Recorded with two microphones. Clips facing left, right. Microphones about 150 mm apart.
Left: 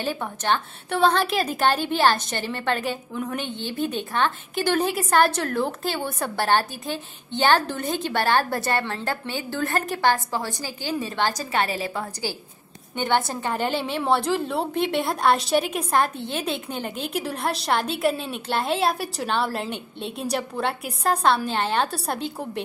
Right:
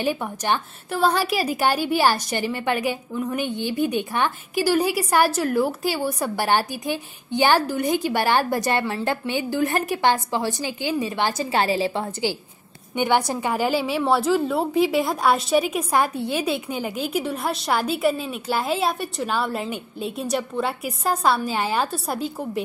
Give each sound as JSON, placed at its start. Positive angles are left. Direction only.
{"t": 0.0, "sound": "a woman's voice", "side_deg": -15}
{"t": 11.5, "sound": "a woman's voice", "side_deg": -30}